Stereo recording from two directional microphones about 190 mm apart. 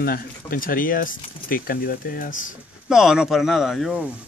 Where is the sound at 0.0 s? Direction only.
50° left (ahead or behind).